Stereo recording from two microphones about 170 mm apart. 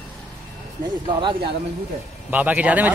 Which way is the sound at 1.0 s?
30° right (ahead or behind).